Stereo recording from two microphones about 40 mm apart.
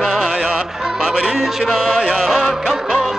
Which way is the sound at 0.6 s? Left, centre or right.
Centre.